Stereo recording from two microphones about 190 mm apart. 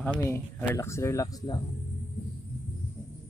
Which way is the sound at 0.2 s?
10° left (ahead or behind).